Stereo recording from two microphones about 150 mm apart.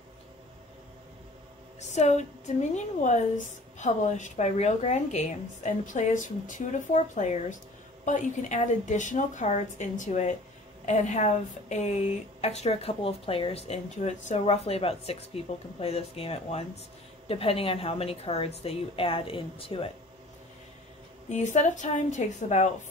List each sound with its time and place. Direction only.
1.8 s a woman's voice: 50° left (ahead or behind)
21.3 s a woman's voice: 55° left (ahead or behind)